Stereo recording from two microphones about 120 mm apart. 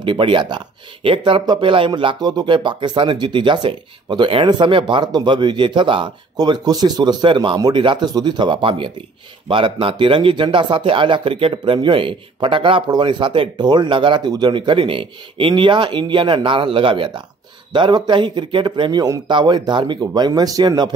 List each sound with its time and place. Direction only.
0.0 s speech: 45° right (ahead or behind)